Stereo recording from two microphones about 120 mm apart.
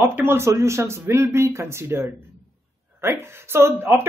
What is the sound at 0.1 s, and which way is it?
Speech, 20° right (ahead or behind).